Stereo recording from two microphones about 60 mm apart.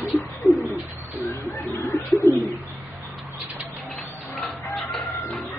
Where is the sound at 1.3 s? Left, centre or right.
Left.